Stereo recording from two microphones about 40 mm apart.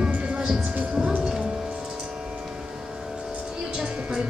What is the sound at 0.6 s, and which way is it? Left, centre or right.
Music, right.